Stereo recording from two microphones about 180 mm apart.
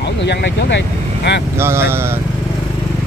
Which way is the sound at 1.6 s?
15° right (ahead or behind).